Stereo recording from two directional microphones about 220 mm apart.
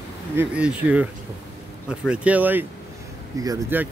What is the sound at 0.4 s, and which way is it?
Speech, 5° right (ahead or behind).